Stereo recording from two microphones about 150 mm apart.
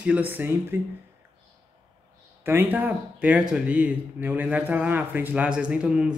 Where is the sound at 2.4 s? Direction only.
15° right (ahead or behind).